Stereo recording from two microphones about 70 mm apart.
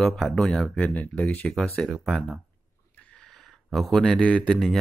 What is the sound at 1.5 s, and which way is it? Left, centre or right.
Speech, centre.